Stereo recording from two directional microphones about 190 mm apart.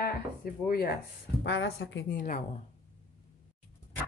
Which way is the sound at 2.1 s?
45° left (ahead or behind).